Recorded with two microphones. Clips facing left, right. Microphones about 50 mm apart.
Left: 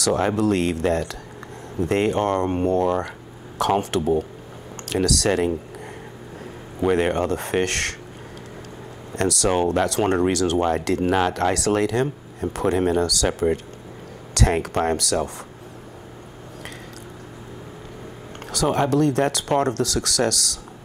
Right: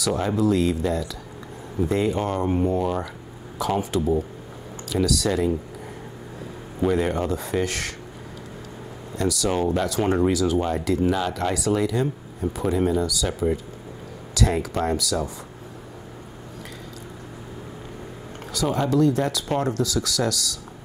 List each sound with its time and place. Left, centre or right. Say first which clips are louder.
0.0 s a man's voice: left 2 dB; left
6.9 s speech: left 3 dB; left
9.1 s speech: left 3 dB; left
11.1 s speech: left 4 dB; left
14.3 s speech: left 2 dB; left
18.5 s speech: left 3 dB; left